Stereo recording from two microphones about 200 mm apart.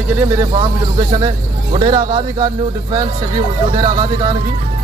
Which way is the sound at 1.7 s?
20° right (ahead or behind).